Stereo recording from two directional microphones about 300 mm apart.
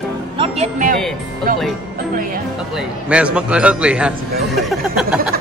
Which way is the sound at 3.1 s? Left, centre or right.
Centre.